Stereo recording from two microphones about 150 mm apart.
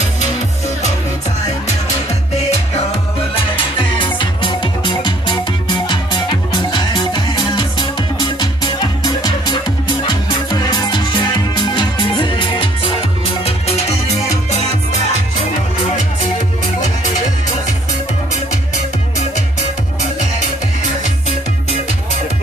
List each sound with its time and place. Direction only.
0.0 s music: 50° left (ahead or behind)
3.3 s music: 35° left (ahead or behind)